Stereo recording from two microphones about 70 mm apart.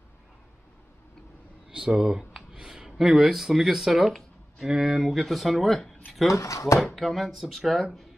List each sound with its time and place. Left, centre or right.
1.7 s speech: centre
6.3 s speech: left
7.0 s speech: centre